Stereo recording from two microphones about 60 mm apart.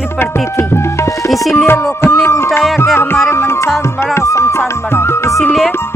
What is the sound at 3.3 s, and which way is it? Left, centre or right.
Speech, left.